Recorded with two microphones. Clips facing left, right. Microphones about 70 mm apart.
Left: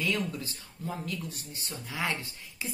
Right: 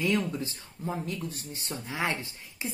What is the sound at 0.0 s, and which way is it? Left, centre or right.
A woman's voice, right.